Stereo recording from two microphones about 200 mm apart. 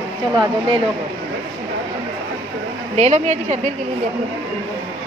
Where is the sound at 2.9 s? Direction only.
35° right (ahead or behind).